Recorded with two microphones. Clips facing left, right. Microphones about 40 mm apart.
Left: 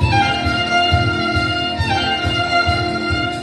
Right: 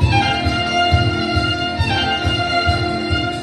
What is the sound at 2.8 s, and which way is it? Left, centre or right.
Music, left.